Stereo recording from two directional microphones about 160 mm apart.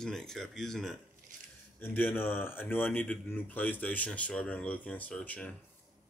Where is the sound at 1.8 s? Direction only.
15° left (ahead or behind).